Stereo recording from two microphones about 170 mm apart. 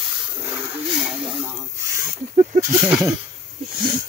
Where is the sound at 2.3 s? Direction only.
45° right (ahead or behind).